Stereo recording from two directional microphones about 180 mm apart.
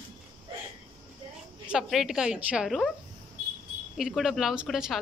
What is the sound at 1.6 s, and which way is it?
Speech, 5° right (ahead or behind).